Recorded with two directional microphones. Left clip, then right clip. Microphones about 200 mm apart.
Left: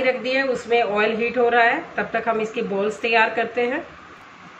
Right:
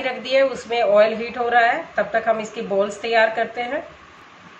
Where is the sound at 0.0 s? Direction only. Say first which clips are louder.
Right 2 dB; 25° right (ahead or behind).